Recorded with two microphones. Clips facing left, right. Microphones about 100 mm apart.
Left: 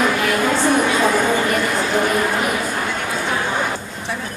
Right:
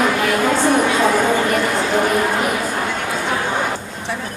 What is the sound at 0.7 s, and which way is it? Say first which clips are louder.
Chatter: right 1 dB; 35° right (ahead or behind).